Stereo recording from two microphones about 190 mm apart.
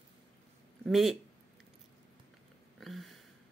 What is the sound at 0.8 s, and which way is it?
Speech, centre (ahead or behind).